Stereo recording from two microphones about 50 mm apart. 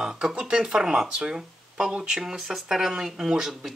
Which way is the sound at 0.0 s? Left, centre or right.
Centre.